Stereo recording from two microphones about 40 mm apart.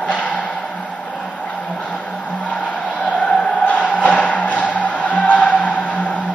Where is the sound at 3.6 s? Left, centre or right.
Left.